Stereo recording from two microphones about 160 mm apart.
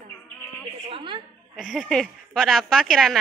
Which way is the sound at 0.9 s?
35° right (ahead or behind).